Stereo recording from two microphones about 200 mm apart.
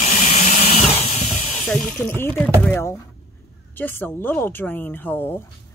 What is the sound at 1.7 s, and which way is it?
A woman's voice, 5° left (ahead or behind).